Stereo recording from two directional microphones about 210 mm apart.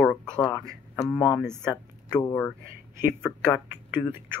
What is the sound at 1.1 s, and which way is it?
Speech, 20° left (ahead or behind).